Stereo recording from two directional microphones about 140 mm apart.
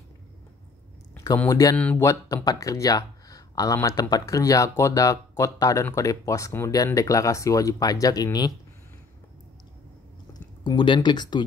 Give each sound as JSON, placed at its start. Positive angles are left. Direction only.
{"t": 1.1, "sound": "a sound", "side_deg": 25}
{"t": 1.5, "sound": "speech", "side_deg": 25}
{"t": 10.6, "sound": "speech", "side_deg": 35}